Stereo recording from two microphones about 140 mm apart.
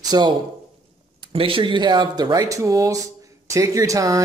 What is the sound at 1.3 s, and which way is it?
Speech, 40° right (ahead or behind).